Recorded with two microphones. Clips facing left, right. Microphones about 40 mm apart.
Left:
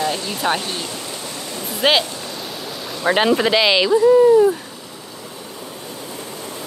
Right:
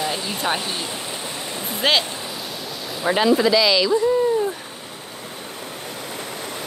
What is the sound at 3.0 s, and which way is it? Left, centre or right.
Speech, left.